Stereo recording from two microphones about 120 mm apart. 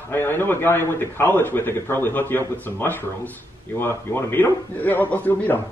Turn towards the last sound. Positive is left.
turn(degrees=15)  # may be behind; listen again after turning